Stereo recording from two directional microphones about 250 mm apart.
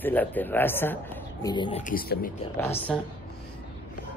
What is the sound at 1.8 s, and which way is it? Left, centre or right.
Speech, left.